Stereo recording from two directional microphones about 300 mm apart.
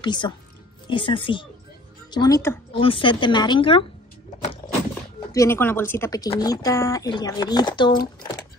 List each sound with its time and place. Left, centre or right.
0.0 s speech: centre
5.3 s speech: centre